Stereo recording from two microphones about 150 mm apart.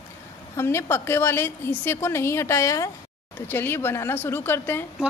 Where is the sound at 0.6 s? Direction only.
15° left (ahead or behind).